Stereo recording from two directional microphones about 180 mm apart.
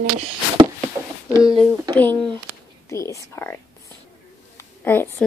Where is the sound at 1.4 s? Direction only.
Centre (ahead or behind).